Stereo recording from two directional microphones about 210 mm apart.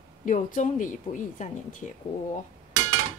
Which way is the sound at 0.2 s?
40° left (ahead or behind).